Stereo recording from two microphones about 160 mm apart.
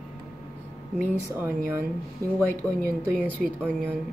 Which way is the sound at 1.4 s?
15° right (ahead or behind).